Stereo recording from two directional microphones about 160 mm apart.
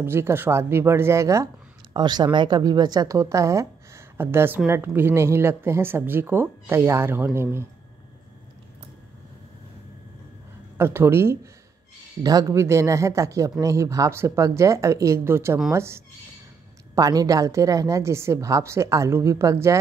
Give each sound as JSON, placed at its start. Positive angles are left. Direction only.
{"t": 0.0, "sound": "a woman's voice", "side_deg": -15}
{"t": 10.8, "sound": "a woman's voice", "side_deg": -15}